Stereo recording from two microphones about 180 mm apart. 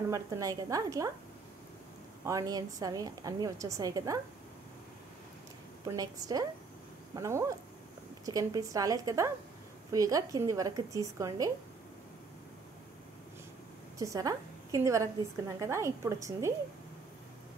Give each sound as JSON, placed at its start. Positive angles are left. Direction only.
{"t": 0.1, "sound": "a woman's voice", "side_deg": -20}
{"t": 2.2, "sound": "a woman's voice", "side_deg": -20}
{"t": 5.9, "sound": "a woman's voice", "side_deg": -20}
{"t": 13.9, "sound": "a woman's voice", "side_deg": -20}